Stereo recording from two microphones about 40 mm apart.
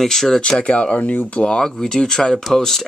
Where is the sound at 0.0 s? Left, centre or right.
Centre.